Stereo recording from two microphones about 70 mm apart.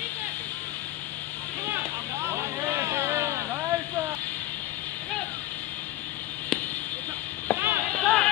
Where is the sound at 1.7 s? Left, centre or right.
Right.